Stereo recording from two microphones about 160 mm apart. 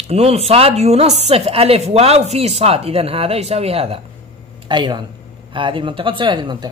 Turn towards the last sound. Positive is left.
turn(degrees=-30)  # may be behind; listen again after turning